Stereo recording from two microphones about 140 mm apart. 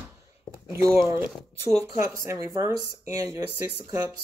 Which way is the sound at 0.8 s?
20° right (ahead or behind).